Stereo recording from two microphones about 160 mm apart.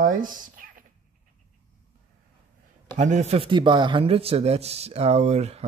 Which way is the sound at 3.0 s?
45° right (ahead or behind).